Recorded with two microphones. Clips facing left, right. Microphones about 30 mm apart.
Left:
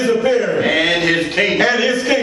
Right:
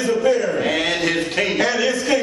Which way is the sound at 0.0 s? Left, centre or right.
Left.